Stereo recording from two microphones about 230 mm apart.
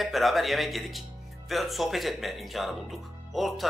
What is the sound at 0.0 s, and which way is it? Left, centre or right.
Speech, centre.